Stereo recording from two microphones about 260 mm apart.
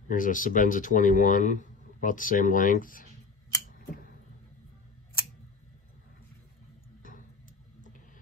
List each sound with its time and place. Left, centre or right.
0.1 s speech: left